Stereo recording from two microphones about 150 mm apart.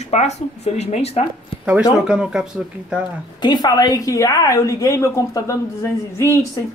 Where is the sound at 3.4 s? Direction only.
25° left (ahead or behind).